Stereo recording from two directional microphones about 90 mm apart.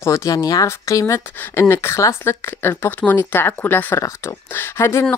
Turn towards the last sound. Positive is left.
turn(degrees=30)  # may be behind; listen again after turning